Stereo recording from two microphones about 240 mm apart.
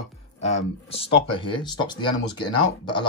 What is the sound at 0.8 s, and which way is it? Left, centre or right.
Speech, left.